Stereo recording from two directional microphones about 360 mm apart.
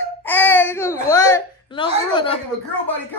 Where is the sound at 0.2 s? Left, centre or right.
Centre.